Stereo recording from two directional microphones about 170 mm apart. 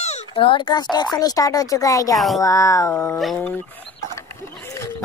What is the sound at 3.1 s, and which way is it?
Speech, centre (ahead or behind).